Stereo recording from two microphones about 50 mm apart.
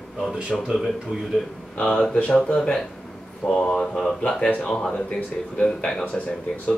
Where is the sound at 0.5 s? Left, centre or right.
Centre.